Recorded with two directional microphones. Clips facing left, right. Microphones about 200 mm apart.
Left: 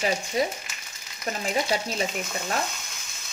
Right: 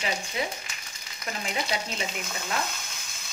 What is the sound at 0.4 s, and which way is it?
Frying, 40° left (ahead or behind).